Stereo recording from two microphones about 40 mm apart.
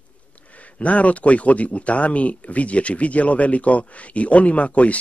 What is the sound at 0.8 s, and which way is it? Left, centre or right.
Speech, left.